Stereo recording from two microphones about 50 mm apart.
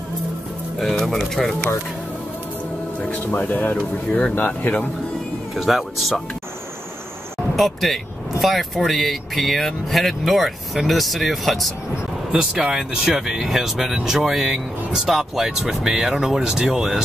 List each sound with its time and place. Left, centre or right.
0.7 s speech: centre
3.1 s speech: left
5.5 s speech: centre
7.5 s speech: centre
12.3 s speech: centre